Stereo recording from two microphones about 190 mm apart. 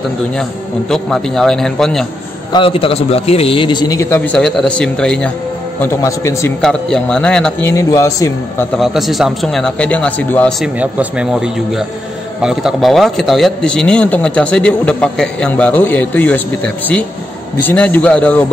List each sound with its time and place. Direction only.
0.4 s a man's voice: centre (ahead or behind)
2.5 s a man's voice: 30° left (ahead or behind)
6.6 s a man's voice: 5° left (ahead or behind)
7.7 s speech: 15° left (ahead or behind)
8.7 s a man's voice: centre (ahead or behind)
10.8 s a man's voice: 5° right (ahead or behind)